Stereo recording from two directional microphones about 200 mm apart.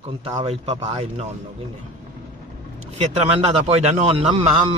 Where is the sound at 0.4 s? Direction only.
30° right (ahead or behind).